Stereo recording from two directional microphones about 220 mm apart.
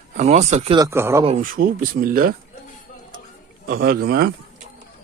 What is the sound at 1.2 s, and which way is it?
Speech, 35° right (ahead or behind).